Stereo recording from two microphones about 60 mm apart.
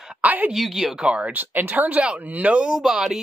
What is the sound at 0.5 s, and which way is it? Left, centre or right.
Speech, centre.